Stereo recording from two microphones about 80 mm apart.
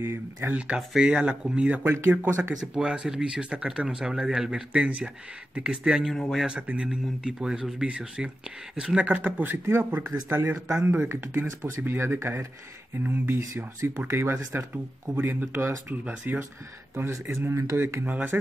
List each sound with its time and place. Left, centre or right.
0.0 s speech: right
1.9 s speech: right
2.5 s speech: centre
9.1 s speech: right
13.0 s speech: right
14.0 s speech: right
15.1 s speech: right
16.9 s speech: right
17.7 s speech: right